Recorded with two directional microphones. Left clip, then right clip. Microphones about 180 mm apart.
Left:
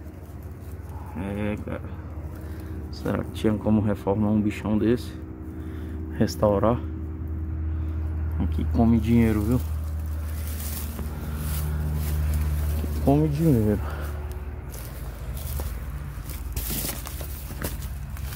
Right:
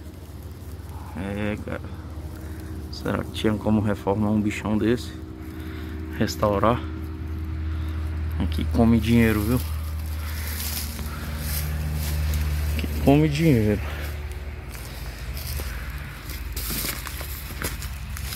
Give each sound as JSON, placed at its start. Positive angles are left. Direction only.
{"t": 1.1, "sound": "a sound", "side_deg": -5}
{"t": 3.0, "sound": "speech", "side_deg": 10}
{"t": 6.1, "sound": "speech", "side_deg": 15}
{"t": 8.4, "sound": "speech", "side_deg": -5}
{"t": 13.0, "sound": "speech", "side_deg": -15}